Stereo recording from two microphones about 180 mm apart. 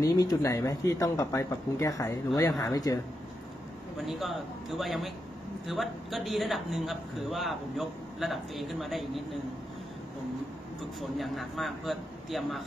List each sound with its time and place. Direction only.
0.0 s speech: 20° left (ahead or behind)
4.0 s a man's voice: centre (ahead or behind)
10.8 s a man's voice: centre (ahead or behind)